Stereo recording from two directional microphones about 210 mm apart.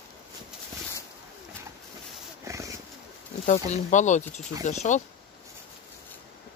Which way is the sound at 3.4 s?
35° left (ahead or behind).